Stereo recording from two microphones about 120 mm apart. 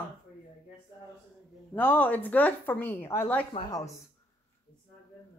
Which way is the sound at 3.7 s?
30° left (ahead or behind).